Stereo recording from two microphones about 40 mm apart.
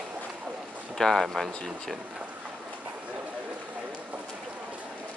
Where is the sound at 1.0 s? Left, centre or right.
Centre.